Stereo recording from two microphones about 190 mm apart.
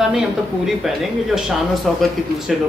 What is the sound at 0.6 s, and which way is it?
Speech, centre (ahead or behind).